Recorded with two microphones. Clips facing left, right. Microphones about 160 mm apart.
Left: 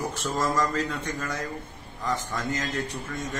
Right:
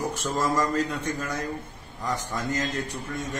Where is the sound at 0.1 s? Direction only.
15° right (ahead or behind).